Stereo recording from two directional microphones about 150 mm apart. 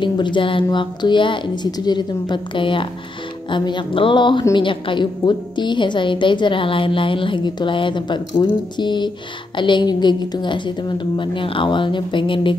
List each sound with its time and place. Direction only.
0.0 s a woman's voice: 30° left (ahead or behind)